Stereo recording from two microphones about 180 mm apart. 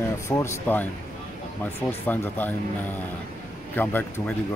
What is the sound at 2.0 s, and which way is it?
Speech, 10° left (ahead or behind).